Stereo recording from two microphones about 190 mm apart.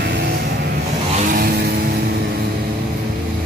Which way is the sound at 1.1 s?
45° right (ahead or behind).